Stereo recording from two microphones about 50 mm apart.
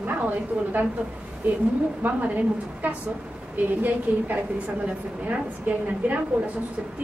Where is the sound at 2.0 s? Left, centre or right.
Right.